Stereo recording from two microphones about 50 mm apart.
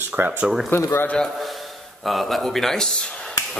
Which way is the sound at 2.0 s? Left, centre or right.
Centre.